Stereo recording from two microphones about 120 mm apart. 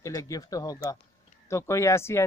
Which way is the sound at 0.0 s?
30° left (ahead or behind).